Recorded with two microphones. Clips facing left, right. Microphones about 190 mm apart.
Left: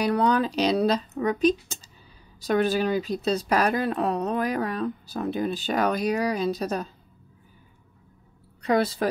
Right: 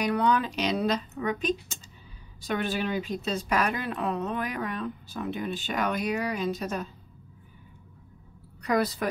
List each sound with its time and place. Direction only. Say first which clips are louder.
0.0 s speech: left 3 dB; 35° left (ahead or behind)
8.6 s a woman's voice: left 3 dB; 25° left (ahead or behind)